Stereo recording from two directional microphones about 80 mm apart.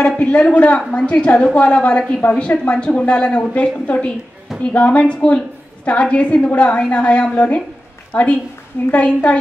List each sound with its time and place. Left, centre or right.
0.0 s a woman's voice: centre